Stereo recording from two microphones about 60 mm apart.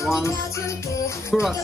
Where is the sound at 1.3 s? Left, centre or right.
Centre.